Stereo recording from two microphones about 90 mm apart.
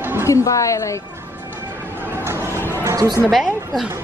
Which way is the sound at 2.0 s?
25° right (ahead or behind).